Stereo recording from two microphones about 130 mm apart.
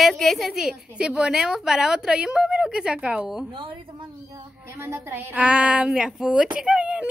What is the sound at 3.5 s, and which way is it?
Speech, 40° right (ahead or behind).